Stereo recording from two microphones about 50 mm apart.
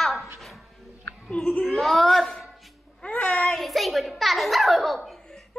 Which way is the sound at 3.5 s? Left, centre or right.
Centre.